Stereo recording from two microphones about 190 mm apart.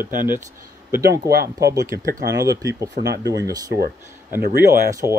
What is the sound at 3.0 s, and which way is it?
Speech, 65° right (ahead or behind).